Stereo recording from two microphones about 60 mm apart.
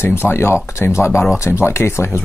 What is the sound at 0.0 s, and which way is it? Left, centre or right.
Speech, left.